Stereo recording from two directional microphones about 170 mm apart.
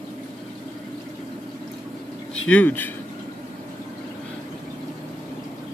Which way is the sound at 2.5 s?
10° left (ahead or behind).